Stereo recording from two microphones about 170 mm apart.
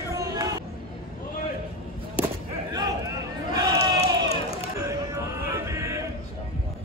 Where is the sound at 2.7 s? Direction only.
20° right (ahead or behind).